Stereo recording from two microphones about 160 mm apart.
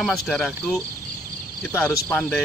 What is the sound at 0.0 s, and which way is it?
Speech, centre (ahead or behind).